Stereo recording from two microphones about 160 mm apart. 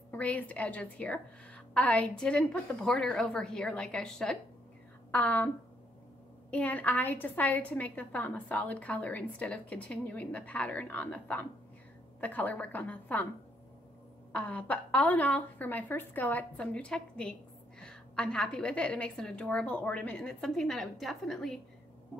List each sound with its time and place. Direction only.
0.1 s a woman's voice: 10° left (ahead or behind)
6.5 s a woman's voice: 10° left (ahead or behind)
14.3 s a woman's voice: 10° left (ahead or behind)